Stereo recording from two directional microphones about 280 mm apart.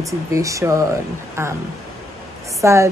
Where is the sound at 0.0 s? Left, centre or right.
Centre.